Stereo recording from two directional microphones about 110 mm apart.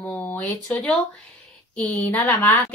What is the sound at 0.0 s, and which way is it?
A woman's voice, 15° left (ahead or behind).